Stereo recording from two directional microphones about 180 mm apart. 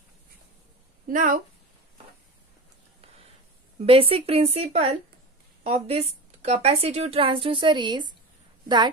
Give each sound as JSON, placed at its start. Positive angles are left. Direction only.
{"t": 1.0, "sound": "a woman's voice", "side_deg": -50}
{"t": 3.8, "sound": "a woman's voice", "side_deg": -30}